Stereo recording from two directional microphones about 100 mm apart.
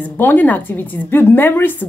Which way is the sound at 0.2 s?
20° left (ahead or behind).